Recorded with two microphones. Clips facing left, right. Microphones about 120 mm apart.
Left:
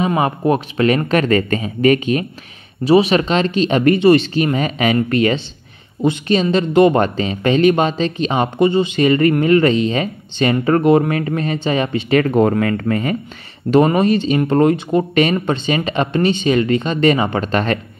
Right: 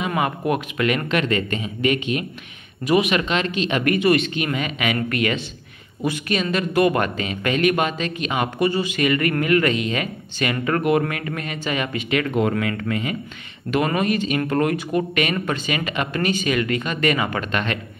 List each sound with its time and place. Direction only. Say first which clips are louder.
0.0 s speech: left 6 dB; 30° left (ahead or behind)
2.8 s speech: left 6 dB; 30° left (ahead or behind)
13.7 s speech: left 8 dB; 30° left (ahead or behind)